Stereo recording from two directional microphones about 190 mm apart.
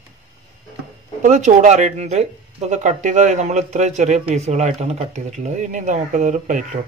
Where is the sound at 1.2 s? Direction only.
40° right (ahead or behind).